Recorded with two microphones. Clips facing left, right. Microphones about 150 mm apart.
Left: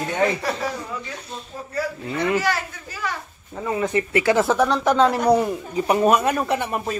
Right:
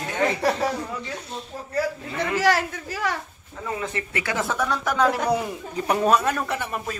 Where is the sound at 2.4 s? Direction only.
90° right.